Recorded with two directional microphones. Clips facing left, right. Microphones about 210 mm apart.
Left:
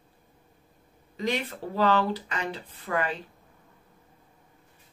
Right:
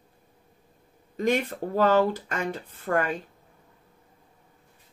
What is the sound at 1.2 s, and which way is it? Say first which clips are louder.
Speech: right 5 dB; 45° right (ahead or behind).